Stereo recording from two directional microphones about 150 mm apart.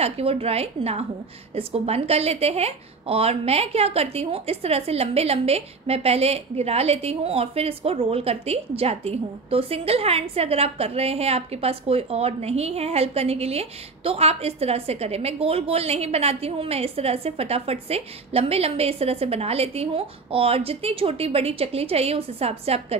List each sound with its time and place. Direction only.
0.0 s a woman's voice: 40° right (ahead or behind)